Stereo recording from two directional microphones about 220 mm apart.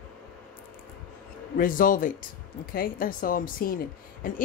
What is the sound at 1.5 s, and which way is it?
A woman's voice, 40° left (ahead or behind).